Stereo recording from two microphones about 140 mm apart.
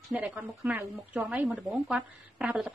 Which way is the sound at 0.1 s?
10° right (ahead or behind).